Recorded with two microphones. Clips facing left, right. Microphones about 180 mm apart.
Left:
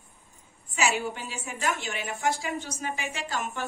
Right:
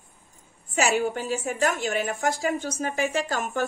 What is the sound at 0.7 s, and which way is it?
A woman's voice, 45° right (ahead or behind).